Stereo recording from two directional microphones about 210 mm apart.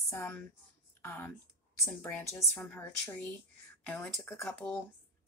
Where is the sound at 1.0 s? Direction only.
10° left (ahead or behind).